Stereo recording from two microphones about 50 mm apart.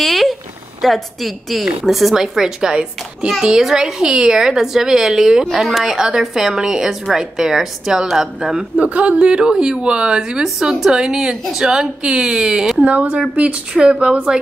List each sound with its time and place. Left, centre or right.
0.0 s a sound: centre
0.8 s a woman's voice: centre
8.7 s a woman's voice: right; by 12.7 s centre
12.7 s speech: right